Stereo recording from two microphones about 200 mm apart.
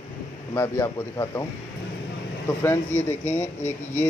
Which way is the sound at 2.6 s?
10° left (ahead or behind).